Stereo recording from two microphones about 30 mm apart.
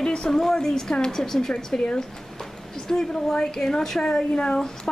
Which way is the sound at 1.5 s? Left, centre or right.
Left.